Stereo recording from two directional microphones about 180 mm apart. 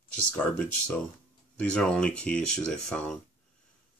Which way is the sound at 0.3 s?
10° left (ahead or behind).